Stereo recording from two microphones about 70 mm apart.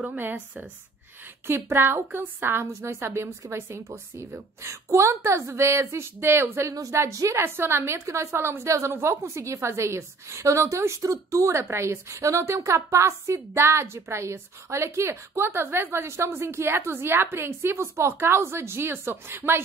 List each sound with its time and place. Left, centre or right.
1.5 s a woman's voice: right
6.7 s speech: right
7.0 s a woman's voice: right